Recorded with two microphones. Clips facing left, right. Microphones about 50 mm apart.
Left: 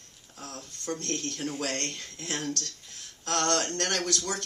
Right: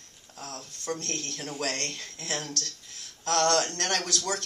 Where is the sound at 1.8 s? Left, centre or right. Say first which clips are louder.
Even; left.